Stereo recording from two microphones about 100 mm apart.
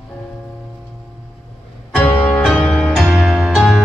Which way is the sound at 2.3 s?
Centre (ahead or behind).